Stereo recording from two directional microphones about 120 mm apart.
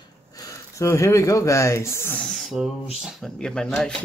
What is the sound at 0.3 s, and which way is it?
Speech, 30° left (ahead or behind).